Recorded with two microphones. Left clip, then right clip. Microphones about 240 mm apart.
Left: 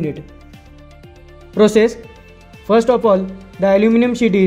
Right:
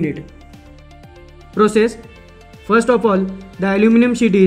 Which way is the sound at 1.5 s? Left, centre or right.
Centre.